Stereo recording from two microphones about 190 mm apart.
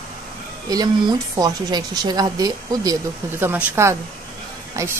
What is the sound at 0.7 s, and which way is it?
A woman's voice, 20° right (ahead or behind).